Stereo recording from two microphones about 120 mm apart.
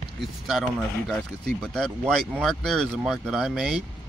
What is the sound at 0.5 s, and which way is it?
Speech, centre (ahead or behind).